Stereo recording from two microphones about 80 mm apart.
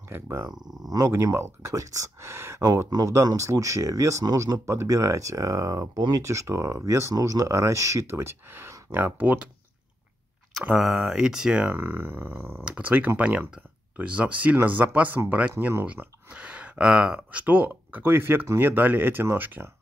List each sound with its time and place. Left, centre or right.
0.1 s speech: right
0.8 s speech: right
1.1 s speech: right
2.6 s speech: right
4.6 s speech: right
10.8 s speech: centre
11.7 s speech: right
12.6 s speech: centre